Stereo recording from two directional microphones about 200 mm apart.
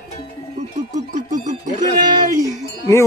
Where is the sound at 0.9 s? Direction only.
40° right (ahead or behind).